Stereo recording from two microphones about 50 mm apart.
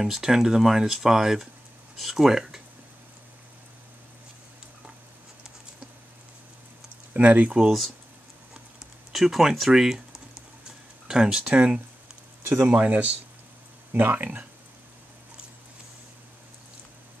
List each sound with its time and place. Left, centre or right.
0.0 s speech: centre
7.2 s speech: right
9.1 s speech: centre
11.5 s speech: right
12.4 s speech: right